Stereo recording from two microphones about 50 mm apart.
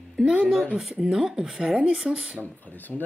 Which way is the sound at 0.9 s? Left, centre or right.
Centre.